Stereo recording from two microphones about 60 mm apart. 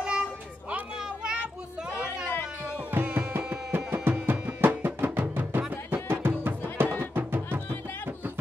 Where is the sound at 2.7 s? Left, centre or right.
Right.